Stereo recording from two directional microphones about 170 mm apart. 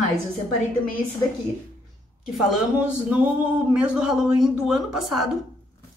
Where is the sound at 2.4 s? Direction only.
10° right (ahead or behind).